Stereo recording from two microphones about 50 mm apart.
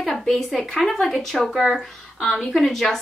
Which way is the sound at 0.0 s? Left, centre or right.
Centre.